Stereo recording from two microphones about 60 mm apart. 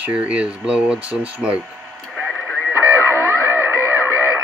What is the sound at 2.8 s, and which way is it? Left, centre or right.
Music, right.